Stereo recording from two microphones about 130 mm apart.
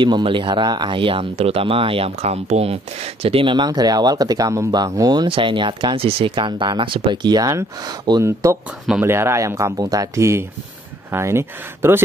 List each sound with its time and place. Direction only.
0.0 s speech: 40° right (ahead or behind); by 12.0 s 20° right (ahead or behind)